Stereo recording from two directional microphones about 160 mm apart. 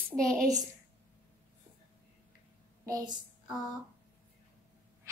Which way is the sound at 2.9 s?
25° right (ahead or behind).